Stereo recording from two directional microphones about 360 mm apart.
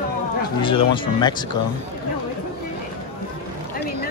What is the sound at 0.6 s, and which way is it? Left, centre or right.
Speech, centre.